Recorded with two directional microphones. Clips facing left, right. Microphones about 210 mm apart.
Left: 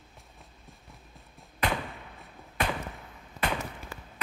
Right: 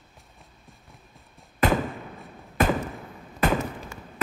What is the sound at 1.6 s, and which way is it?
Thump, 45° right (ahead or behind).